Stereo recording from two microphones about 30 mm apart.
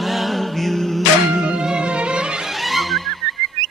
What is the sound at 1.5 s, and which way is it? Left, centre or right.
Music, right.